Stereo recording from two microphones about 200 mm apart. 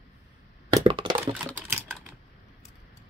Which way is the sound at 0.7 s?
25° right (ahead or behind).